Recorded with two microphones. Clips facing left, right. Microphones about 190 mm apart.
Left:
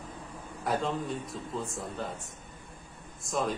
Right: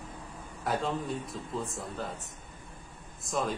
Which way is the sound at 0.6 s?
Centre (ahead or behind).